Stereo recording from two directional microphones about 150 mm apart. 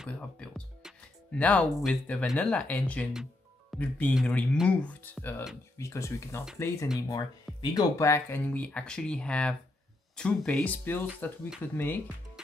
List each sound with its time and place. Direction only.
0.1 s speech: 5° left (ahead or behind)